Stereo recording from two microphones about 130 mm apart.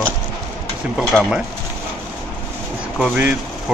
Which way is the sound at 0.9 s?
5° right (ahead or behind).